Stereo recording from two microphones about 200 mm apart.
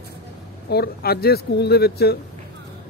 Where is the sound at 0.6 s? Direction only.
50° left (ahead or behind).